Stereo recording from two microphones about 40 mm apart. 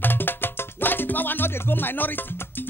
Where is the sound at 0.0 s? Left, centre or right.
Left.